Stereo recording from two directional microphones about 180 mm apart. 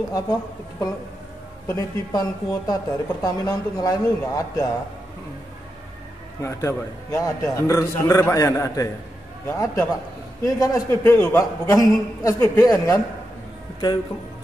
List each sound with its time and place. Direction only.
0.1 s a woman's voice: 20° left (ahead or behind)
6.4 s a man's voice: 15° left (ahead or behind)